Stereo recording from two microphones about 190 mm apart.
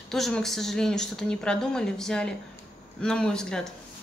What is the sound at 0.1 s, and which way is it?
Speech, centre (ahead or behind).